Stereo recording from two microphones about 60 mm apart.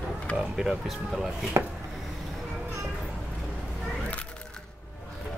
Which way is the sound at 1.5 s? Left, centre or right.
Right.